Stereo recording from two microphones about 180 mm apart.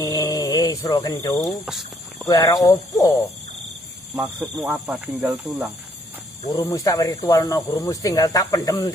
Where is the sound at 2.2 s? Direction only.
20° left (ahead or behind).